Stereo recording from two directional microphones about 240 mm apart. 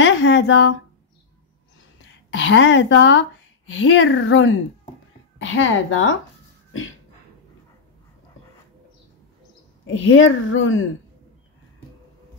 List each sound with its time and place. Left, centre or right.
0.0 s speech: left
2.3 s speech: left
9.8 s speech: left